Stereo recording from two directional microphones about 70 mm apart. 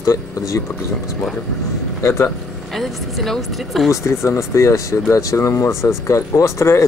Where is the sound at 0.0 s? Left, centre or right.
Left.